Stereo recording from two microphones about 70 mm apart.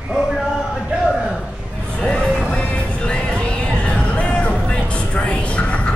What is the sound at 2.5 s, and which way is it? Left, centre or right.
Music, centre.